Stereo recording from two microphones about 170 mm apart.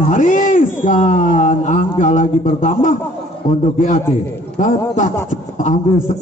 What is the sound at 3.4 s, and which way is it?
A man's voice, 45° left (ahead or behind).